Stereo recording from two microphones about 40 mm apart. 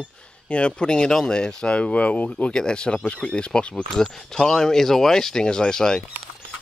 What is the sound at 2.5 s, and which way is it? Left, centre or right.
Speech, left.